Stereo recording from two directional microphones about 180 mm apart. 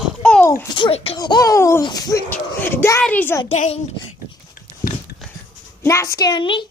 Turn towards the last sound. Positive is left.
turn(degrees=25)  # may be behind; listen again after turning